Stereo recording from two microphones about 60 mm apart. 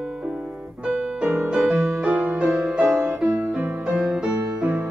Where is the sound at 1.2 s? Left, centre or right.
Centre.